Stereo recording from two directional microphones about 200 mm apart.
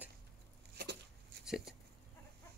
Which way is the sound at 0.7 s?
55° right (ahead or behind).